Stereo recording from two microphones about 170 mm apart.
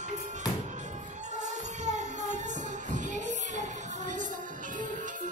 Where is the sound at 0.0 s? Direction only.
45° right (ahead or behind).